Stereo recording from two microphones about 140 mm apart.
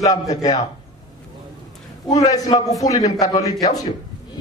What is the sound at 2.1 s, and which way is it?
Speech, 25° left (ahead or behind).